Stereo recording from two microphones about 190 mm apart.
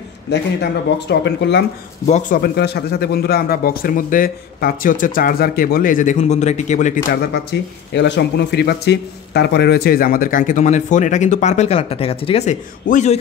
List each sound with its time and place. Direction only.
0.3 s speech: 65° left (ahead or behind)
2.0 s a man's voice: 40° left (ahead or behind)
7.5 s a man's voice: 65° left (ahead or behind); by 13.2 s 40° left (ahead or behind)